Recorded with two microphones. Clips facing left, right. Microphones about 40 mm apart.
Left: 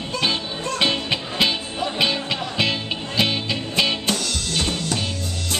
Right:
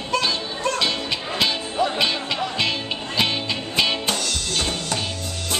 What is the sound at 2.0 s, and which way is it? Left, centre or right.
Music, centre.